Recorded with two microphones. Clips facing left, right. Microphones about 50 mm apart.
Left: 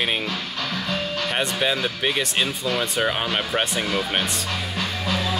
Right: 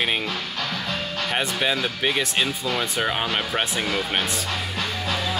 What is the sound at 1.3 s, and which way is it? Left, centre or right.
Speech, centre.